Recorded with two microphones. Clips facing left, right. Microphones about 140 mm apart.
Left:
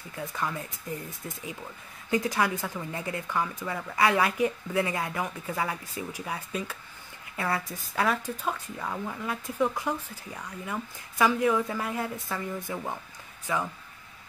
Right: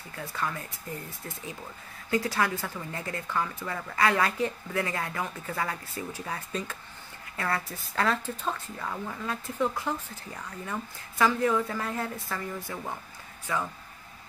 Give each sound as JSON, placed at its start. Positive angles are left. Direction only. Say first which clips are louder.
{"t": 0.1, "sound": "speech", "louder": "left 1 dB", "side_deg": 20}
{"t": 2.0, "sound": "speech", "louder": "left 1 dB", "side_deg": 20}